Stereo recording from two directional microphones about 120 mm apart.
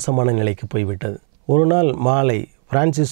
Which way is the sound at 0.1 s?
20° right (ahead or behind).